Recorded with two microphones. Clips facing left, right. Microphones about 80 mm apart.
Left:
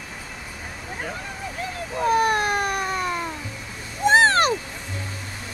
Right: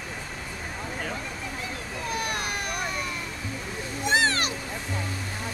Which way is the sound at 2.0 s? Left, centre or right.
Left.